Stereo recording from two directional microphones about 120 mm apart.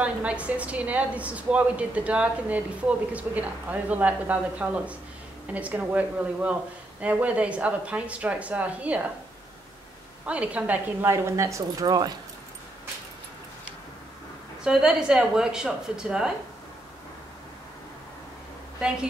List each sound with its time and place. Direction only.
0.0 s a woman's voice: 10° right (ahead or behind)
10.2 s speech: 10° right (ahead or behind); by 12.2 s 35° right (ahead or behind)
14.6 s speech: 5° right (ahead or behind)
18.8 s speech: 5° right (ahead or behind)